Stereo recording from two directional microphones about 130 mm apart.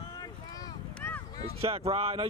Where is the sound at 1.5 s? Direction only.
50° right (ahead or behind).